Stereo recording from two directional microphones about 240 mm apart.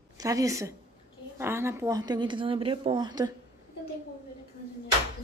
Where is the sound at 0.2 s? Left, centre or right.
Centre.